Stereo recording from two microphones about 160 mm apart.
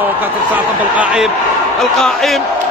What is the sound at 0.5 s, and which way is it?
A man's voice, 5° right (ahead or behind).